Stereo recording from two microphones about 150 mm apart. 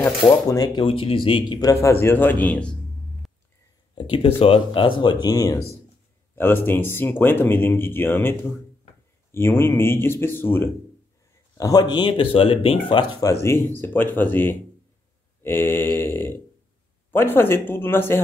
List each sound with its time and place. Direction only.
0.0 s a man's voice: 10° left (ahead or behind)
0.5 s speech: 25° left (ahead or behind)
0.8 s a man's voice: 35° left (ahead or behind); by 3.3 s 5° left (ahead or behind)
3.9 s speech: 35° left (ahead or behind)
6.3 s a man's voice: 15° left (ahead or behind)
15.4 s mantra: 15° left (ahead or behind)
17.1 s a man's voice: 15° left (ahead or behind)